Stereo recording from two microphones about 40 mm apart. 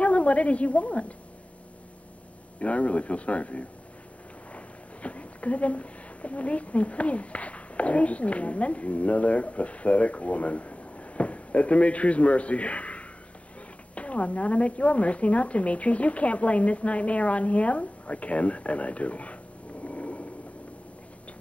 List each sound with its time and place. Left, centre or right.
0.0 s a woman's voice: left
2.6 s speech: left
19.8 s a sound: left